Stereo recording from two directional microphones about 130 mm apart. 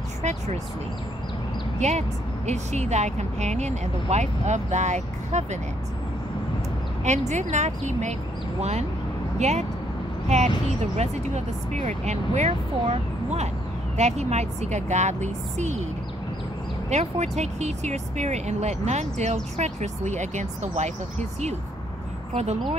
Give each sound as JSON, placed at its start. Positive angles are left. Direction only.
{"t": 0.2, "sound": "speech", "side_deg": -60}
{"t": 1.8, "sound": "speech", "side_deg": -60}
{"t": 7.1, "sound": "speech", "side_deg": -65}
{"t": 16.9, "sound": "speech", "side_deg": -60}